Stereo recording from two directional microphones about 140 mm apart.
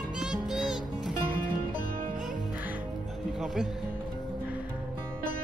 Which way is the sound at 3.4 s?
5° right (ahead or behind).